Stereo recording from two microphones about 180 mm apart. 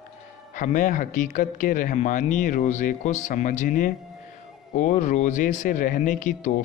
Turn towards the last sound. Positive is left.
turn(degrees=45)  # may be behind; listen again after turning